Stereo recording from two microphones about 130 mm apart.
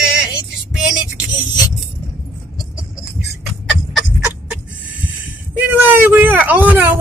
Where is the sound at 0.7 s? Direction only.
5° right (ahead or behind).